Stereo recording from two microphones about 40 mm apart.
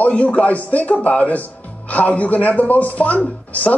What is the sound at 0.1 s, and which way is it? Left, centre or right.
Speech, left.